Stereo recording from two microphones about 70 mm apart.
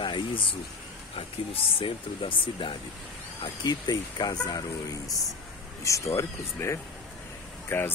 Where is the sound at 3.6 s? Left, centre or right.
Left.